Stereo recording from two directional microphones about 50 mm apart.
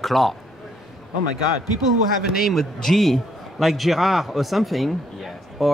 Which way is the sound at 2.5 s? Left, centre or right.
Centre.